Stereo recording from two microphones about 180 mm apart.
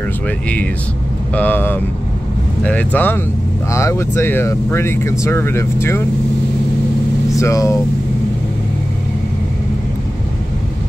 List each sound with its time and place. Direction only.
1.3 s speech: 10° left (ahead or behind)
7.3 s speech: 20° left (ahead or behind)